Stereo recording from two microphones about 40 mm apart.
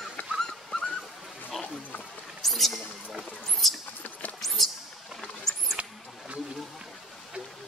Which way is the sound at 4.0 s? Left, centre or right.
Left.